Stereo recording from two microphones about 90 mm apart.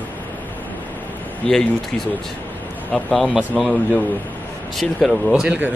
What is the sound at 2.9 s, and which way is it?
A man's voice, 10° left (ahead or behind).